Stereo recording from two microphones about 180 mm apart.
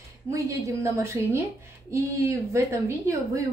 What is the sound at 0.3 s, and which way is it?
A woman's voice, 15° right (ahead or behind).